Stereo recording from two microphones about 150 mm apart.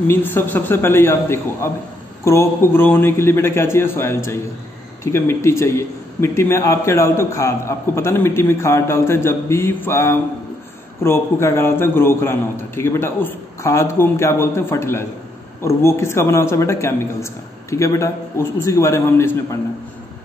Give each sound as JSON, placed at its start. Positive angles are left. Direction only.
{"t": 0.1, "sound": "a man's voice", "side_deg": 15}